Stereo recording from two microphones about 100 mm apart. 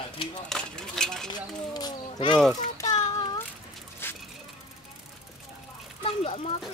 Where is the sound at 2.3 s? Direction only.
5° left (ahead or behind).